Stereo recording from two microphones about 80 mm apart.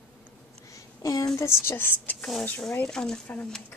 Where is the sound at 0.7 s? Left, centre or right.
Left.